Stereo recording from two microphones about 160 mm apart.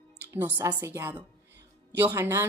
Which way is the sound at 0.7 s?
15° right (ahead or behind).